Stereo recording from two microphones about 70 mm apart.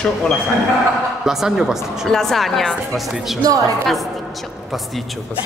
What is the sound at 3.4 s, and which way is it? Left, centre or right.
Speech, right.